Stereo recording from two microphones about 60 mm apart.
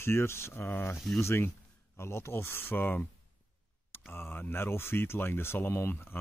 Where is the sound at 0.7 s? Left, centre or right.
Left.